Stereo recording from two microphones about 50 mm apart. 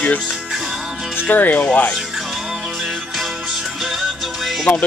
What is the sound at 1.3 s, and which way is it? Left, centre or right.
Speech, left.